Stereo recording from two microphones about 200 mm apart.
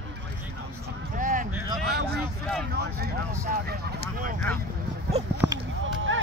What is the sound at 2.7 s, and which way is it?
Vehicle, 55° right (ahead or behind).